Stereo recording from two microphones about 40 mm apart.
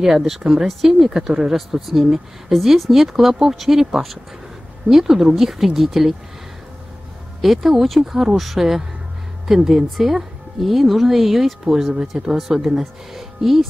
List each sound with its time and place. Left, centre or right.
0.0 s a woman's voice: centre
7.4 s a woman's voice: centre
12.1 s speech: centre
12.6 s speech: centre